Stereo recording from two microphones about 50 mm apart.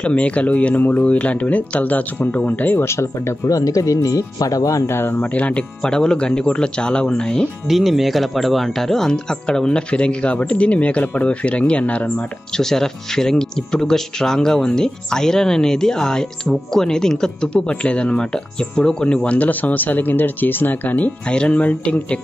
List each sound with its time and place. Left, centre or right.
0.0 s speech: left
2.8 s speech: left
4.7 s speech: left
5.3 s speech: left
5.8 s speech: centre
7.6 s speech: centre; by 12.3 s left
12.5 s speech: centre; by 21.1 s left
21.3 s speech: left